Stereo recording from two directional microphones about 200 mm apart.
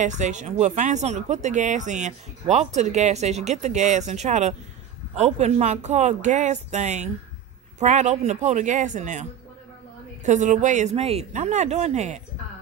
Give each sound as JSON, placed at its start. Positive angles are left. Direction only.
{"t": 0.0, "sound": "speech", "side_deg": -35}